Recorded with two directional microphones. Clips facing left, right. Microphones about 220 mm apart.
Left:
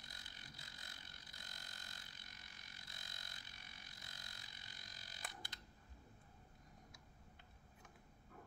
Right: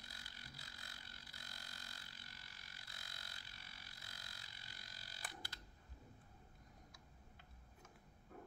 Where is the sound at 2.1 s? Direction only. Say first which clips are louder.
Right 1 dB; 20° left (ahead or behind).